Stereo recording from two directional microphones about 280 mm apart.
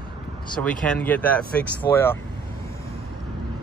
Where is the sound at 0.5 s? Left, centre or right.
Centre.